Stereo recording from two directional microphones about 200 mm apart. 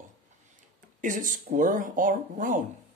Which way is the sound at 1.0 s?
40° right (ahead or behind).